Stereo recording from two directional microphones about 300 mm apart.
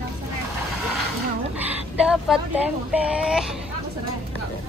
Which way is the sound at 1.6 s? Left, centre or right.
Centre.